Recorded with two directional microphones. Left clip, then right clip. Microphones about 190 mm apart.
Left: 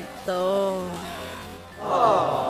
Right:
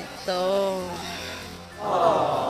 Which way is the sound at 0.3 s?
10° left (ahead or behind).